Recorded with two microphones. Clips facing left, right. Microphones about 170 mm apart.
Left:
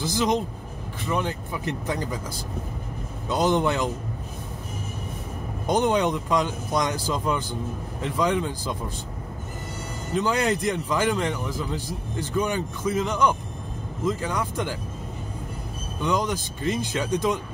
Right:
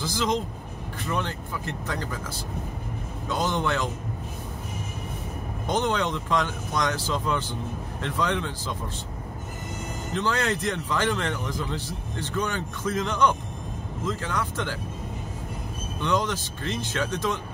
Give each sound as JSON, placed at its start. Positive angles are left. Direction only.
{"t": 0.0, "sound": "speech", "side_deg": 20}
{"t": 3.3, "sound": "speech", "side_deg": 20}
{"t": 5.7, "sound": "speech", "side_deg": 15}
{"t": 10.1, "sound": "speech", "side_deg": 15}
{"t": 16.0, "sound": "speech", "side_deg": 10}